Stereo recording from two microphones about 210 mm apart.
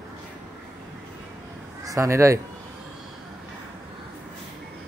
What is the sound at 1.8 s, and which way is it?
Speech, 15° right (ahead or behind).